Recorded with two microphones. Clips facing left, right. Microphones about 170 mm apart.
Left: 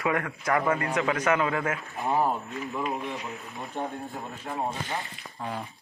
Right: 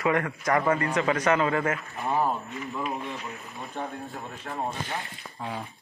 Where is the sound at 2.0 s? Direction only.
15° left (ahead or behind).